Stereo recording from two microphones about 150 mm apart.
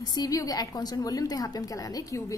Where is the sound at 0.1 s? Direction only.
25° left (ahead or behind).